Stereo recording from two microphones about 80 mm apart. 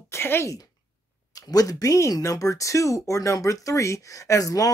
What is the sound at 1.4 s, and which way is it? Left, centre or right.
Speech, left.